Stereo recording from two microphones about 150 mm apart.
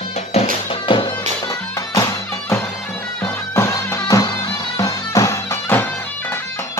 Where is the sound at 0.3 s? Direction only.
40° left (ahead or behind).